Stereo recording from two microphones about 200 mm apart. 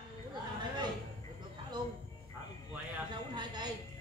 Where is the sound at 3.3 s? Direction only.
20° right (ahead or behind).